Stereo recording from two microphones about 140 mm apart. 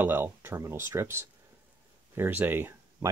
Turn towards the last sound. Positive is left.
turn(degrees=-15)  # may be behind; listen again after turning